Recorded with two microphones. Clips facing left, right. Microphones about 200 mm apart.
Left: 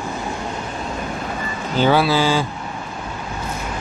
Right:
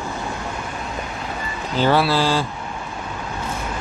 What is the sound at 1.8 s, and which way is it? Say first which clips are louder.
Speech: left 2 dB; centre (ahead or behind).